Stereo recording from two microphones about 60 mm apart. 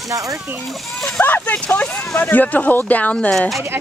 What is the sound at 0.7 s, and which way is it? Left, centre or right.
Speech, centre.